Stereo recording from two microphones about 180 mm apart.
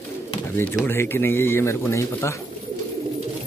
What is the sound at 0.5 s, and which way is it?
Speech, 15° left (ahead or behind).